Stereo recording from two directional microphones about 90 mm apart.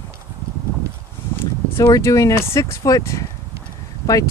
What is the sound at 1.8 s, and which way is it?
Speech, 30° left (ahead or behind).